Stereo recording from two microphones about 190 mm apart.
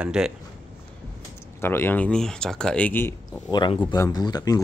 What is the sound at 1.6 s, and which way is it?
Speech, 10° left (ahead or behind).